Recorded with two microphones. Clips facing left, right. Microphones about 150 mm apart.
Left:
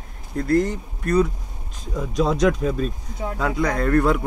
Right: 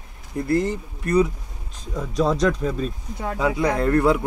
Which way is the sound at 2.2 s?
10° left (ahead or behind).